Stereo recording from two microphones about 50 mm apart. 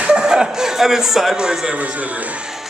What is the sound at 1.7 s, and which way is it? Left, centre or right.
Speech, right.